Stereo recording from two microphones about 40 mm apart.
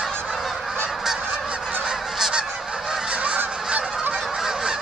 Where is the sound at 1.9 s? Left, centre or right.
Centre.